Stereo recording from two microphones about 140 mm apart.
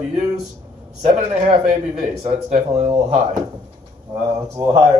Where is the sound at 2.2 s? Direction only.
50° right (ahead or behind).